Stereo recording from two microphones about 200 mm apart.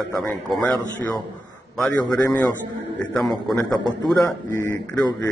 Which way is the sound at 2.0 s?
15° left (ahead or behind).